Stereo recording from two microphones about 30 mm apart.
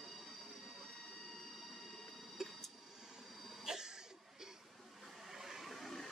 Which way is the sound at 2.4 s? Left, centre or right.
Centre.